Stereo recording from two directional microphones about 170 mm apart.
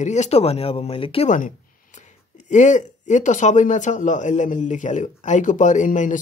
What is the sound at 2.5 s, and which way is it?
Speech, 45° left (ahead or behind).